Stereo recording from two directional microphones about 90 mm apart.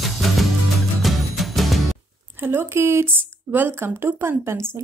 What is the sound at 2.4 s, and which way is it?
A woman's voice, 25° right (ahead or behind).